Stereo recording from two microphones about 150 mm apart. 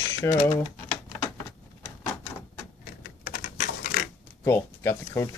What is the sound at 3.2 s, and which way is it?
Typing, 60° left (ahead or behind).